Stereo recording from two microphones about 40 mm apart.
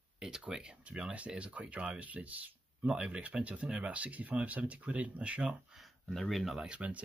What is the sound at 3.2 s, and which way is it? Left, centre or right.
Speech, right.